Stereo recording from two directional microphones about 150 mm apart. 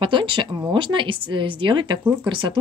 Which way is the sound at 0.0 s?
35° right (ahead or behind).